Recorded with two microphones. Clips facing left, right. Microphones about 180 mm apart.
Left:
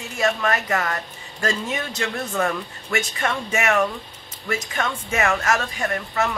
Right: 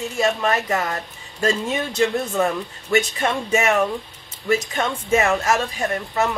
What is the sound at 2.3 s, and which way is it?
Speech, 20° right (ahead or behind).